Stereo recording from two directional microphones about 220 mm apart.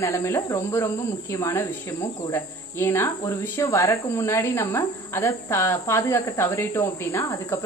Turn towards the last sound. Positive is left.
turn(degrees=10)  # may be behind; listen again after turning